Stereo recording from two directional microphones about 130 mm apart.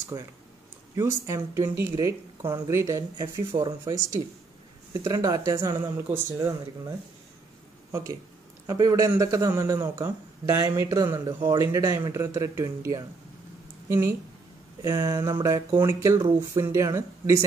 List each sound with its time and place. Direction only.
0.1 s speech: 25° right (ahead or behind)
7.9 s speech: 25° right (ahead or behind)